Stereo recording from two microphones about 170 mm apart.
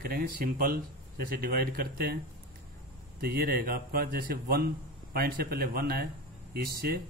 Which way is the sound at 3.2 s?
65° right (ahead or behind).